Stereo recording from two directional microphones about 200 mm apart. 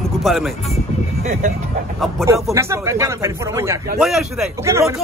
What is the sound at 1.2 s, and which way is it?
Speech, 40° right (ahead or behind).